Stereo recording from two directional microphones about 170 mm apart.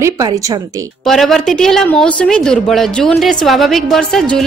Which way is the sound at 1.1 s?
Centre (ahead or behind).